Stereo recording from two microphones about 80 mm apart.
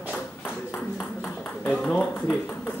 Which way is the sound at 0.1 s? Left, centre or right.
Centre.